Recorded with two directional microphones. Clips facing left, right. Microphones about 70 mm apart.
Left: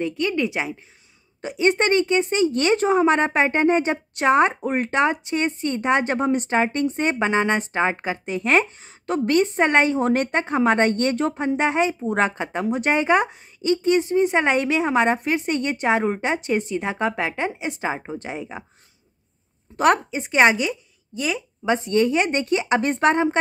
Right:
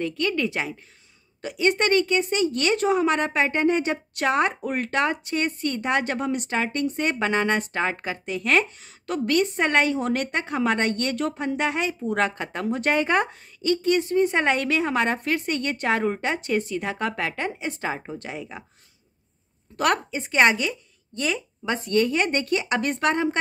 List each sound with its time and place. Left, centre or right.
0.0 s a woman's voice: centre
19.8 s a woman's voice: left; by 21.4 s centre
21.6 s speech: left